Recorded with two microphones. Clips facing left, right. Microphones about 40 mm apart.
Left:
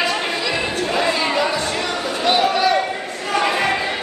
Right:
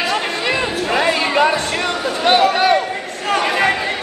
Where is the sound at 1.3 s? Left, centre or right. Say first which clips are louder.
Right 5 dB; right.